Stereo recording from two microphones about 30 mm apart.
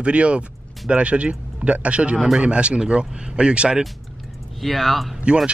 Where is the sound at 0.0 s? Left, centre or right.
Right.